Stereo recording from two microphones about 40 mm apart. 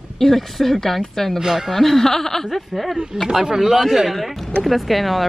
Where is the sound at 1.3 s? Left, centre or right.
Centre.